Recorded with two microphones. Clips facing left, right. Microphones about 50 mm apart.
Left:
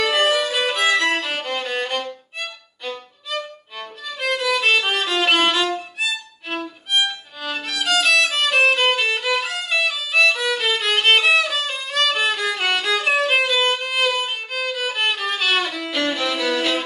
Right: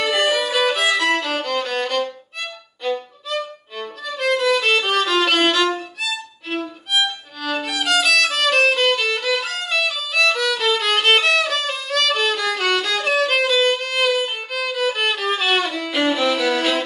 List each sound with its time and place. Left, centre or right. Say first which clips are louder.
0.0 s violin: even; centre
3.3 s violin: right 2 dB; centre
6.0 s violin: right 1 dB; centre
15.9 s violin: right 5 dB; centre